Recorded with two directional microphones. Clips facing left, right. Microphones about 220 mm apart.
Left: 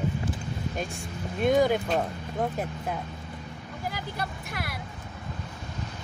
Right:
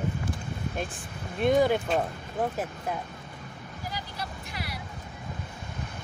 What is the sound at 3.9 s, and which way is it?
Vehicle, 55° left (ahead or behind).